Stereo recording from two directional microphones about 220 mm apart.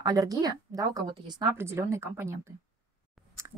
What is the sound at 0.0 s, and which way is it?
A woman's voice, 15° right (ahead or behind).